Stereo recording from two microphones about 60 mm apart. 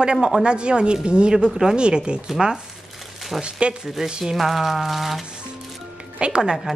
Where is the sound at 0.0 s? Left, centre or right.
Centre.